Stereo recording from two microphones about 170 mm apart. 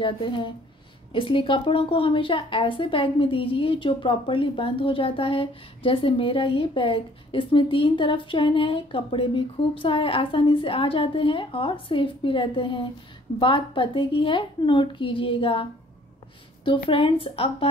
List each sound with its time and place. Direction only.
0.0 s a woman's voice: 30° left (ahead or behind)